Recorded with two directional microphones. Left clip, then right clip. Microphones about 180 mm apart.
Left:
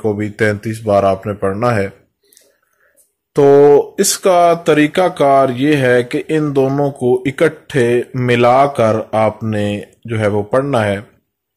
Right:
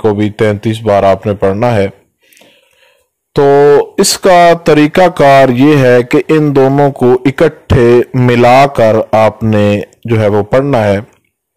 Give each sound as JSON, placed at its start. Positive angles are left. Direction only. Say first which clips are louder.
{"t": 0.0, "sound": "a man's voice", "louder": "right 6 dB", "side_deg": -35}
{"t": 3.3, "sound": "a man's voice", "louder": "right 2 dB", "side_deg": -25}